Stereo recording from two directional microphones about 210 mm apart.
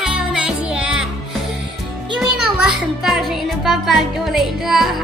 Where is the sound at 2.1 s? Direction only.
5° right (ahead or behind).